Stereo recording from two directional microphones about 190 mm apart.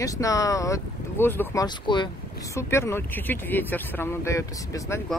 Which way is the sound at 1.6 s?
25° left (ahead or behind).